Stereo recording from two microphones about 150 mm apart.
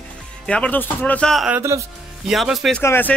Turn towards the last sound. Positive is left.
turn(degrees=15)  # may be behind; listen again after turning